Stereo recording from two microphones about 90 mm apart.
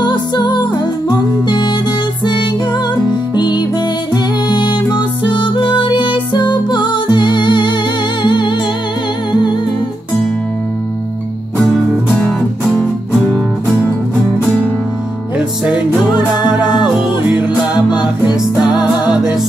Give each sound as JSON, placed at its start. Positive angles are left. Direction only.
{"t": 0.0, "sound": "music", "side_deg": 55}
{"t": 9.3, "sound": "humming", "side_deg": 60}
{"t": 15.3, "sound": "music", "side_deg": -10}